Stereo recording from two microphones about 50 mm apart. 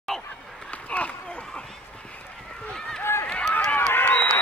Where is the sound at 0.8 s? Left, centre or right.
Left.